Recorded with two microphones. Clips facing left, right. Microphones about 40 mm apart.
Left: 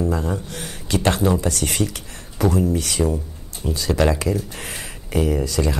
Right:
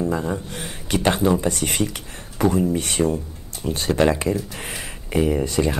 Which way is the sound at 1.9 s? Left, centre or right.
Right.